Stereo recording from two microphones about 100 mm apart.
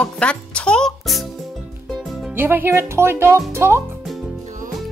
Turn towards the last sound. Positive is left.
turn(degrees=-25)  # may be behind; listen again after turning